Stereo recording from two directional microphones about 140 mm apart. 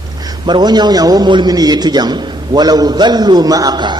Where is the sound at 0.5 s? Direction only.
30° right (ahead or behind).